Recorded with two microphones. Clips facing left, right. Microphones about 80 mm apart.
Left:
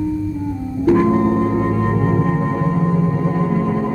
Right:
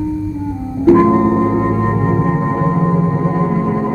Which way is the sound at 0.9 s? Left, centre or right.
Right.